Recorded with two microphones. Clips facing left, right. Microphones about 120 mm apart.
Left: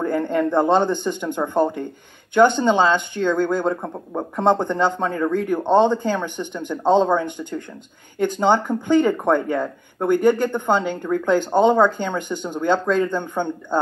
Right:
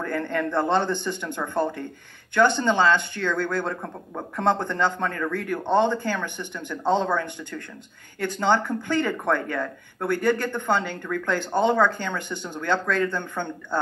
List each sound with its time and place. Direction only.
0.0 s speech: 15° left (ahead or behind)